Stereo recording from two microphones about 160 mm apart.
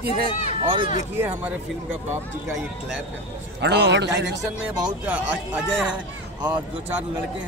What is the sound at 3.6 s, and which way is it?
Speech, 90° right.